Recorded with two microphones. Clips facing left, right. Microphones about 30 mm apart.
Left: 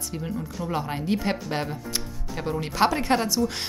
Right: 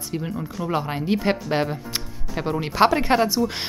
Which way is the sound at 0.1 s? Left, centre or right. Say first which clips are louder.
Right 4 dB; centre.